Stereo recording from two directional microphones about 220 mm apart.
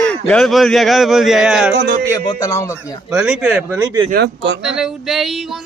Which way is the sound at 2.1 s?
15° left (ahead or behind).